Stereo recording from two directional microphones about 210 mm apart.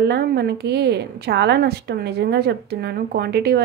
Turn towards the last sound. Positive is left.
turn(degrees=-50)  # may be behind; listen again after turning